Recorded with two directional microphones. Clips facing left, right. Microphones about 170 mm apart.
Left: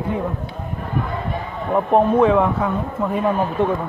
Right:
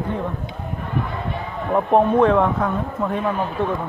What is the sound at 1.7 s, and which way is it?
A man's voice, centre (ahead or behind).